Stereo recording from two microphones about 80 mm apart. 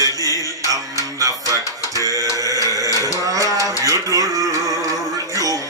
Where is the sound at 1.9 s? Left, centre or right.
Right.